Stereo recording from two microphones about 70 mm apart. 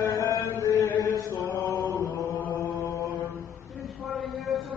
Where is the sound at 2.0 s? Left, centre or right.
Left.